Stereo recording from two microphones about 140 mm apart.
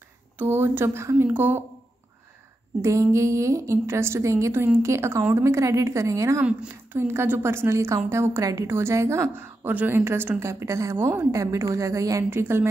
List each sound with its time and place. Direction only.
0.4 s a woman's voice: 15° right (ahead or behind)
2.8 s a woman's voice: 20° right (ahead or behind)
6.4 s a woman's voice: 10° right (ahead or behind)